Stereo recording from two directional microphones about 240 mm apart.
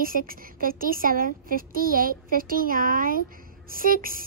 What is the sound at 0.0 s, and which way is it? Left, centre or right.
A woman's voice, right.